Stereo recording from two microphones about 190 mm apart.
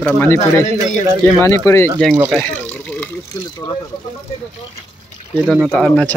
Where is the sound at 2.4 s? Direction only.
10° left (ahead or behind).